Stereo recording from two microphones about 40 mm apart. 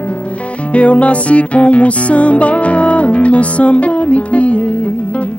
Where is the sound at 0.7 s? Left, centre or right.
Left.